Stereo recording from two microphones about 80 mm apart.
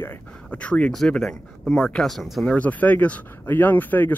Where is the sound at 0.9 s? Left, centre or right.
Centre.